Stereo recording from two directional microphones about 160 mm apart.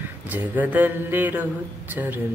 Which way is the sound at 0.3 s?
10° right (ahead or behind).